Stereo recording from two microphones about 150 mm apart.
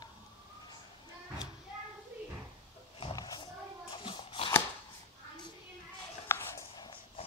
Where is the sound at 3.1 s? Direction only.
25° left (ahead or behind).